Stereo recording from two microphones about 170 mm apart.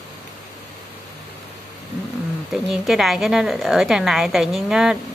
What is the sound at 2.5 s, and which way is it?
A woman's voice, centre (ahead or behind).